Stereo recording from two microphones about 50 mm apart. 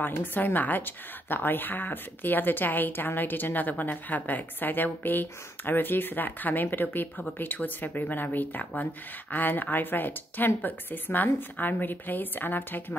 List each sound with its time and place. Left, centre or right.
0.0 s a woman's voice: left